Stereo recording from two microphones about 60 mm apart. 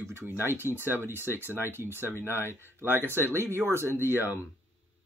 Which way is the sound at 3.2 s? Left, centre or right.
Left.